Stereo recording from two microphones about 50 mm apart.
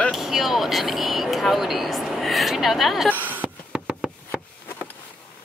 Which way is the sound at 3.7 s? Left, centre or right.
Centre.